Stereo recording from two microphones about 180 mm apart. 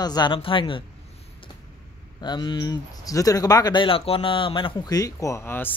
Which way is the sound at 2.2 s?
25° left (ahead or behind).